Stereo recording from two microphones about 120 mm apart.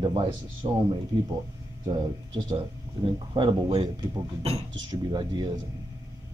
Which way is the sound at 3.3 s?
45° right (ahead or behind).